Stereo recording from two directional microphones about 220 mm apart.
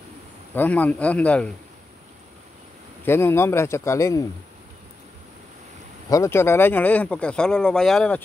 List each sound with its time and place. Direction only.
0.6 s speech: 5° left (ahead or behind)
3.1 s speech: 10° left (ahead or behind)
6.0 s speech: 15° left (ahead or behind)